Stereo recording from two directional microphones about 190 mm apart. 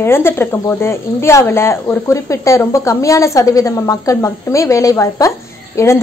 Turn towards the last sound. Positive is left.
turn(degrees=15)  # may be behind; listen again after turning